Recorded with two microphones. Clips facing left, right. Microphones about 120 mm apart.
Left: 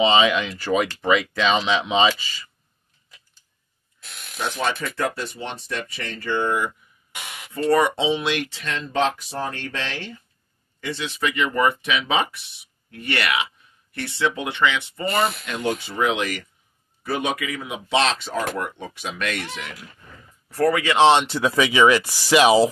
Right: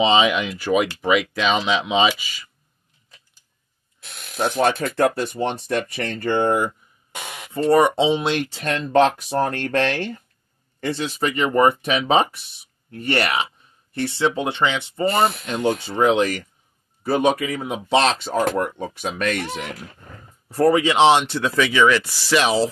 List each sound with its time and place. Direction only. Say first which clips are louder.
0.0 s speech: right 1 dB; 20° right (ahead or behind)
4.4 s speech: right 6 dB; 45° right (ahead or behind)
7.5 s speech: right 3 dB; 25° right (ahead or behind); by 10.2 s 60° right (ahead or behind)
10.8 s speech: right 3 dB; 40° right (ahead or behind)
20.4 s speech: right 3 dB; 30° right (ahead or behind)
21.1 s speech: even; centre (ahead or behind)